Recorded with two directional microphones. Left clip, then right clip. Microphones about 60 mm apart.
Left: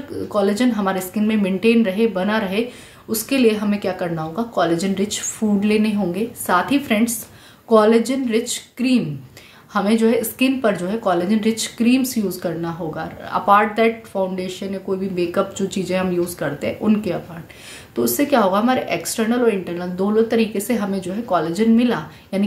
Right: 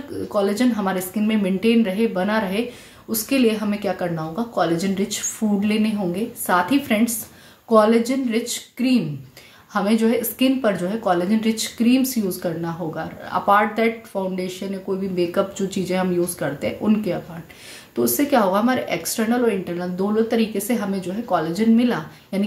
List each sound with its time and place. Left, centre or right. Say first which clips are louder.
0.3 s speech: left 2 dB; left